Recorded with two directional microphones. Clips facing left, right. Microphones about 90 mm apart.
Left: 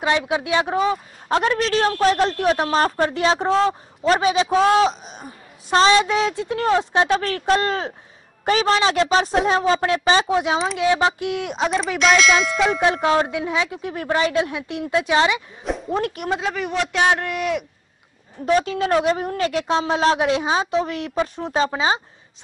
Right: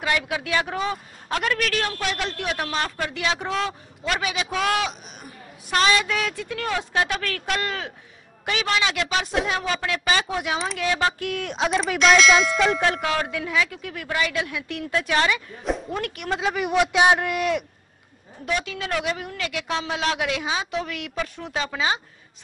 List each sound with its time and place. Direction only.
0.0 s a woman's voice: 25° left (ahead or behind)
11.5 s ding: centre (ahead or behind)
12.8 s a woman's voice: 25° left (ahead or behind)
15.9 s a woman's voice: 30° left (ahead or behind)
16.3 s a man's voice: 5° right (ahead or behind)
18.4 s a woman's voice: 35° left (ahead or behind)